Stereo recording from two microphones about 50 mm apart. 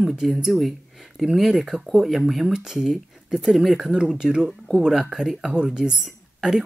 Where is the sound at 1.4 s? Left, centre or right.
Centre.